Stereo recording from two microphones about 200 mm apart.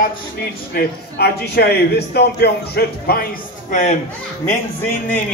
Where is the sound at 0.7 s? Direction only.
50° left (ahead or behind).